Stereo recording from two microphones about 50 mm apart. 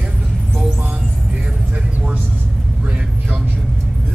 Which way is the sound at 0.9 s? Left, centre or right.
Right.